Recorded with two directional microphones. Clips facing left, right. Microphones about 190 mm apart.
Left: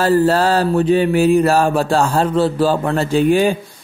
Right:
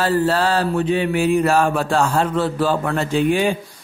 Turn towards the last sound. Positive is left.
turn(degrees=40)  # may be behind; listen again after turning